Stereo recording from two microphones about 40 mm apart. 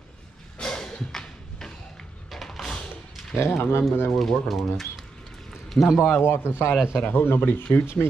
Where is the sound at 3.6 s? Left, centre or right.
Left.